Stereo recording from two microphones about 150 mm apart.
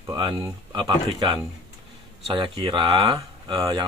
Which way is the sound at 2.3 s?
35° right (ahead or behind).